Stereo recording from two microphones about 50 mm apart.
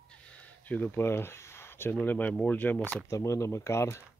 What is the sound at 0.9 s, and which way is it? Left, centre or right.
Speech, left.